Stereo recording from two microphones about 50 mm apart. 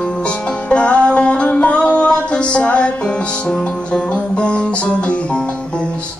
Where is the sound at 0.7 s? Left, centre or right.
Left.